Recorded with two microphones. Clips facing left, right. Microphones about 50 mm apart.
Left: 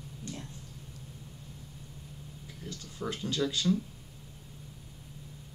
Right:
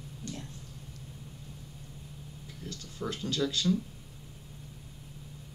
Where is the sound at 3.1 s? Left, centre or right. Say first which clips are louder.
Even; centre.